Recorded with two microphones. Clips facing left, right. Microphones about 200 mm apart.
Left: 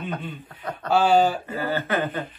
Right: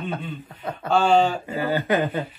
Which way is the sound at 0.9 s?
5° left (ahead or behind).